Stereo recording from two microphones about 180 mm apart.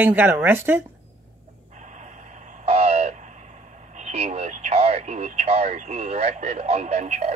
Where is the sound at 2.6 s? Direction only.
35° right (ahead or behind).